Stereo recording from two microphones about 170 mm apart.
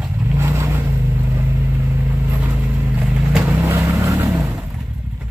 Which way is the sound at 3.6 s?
15° right (ahead or behind).